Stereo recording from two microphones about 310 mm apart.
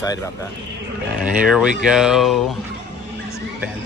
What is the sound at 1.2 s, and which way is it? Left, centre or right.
Speech, centre.